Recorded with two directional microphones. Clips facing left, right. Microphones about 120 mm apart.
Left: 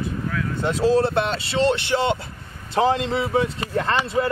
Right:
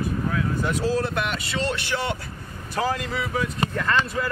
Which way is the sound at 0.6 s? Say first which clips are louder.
Left 8 dB; 25° left (ahead or behind).